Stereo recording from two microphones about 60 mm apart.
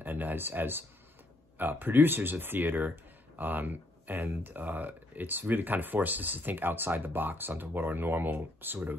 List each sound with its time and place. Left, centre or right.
0.0 s speech: right